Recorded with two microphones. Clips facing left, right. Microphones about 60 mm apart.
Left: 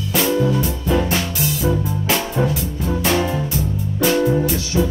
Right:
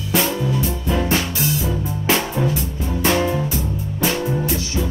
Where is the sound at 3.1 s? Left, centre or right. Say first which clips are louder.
Right 1 dB; centre.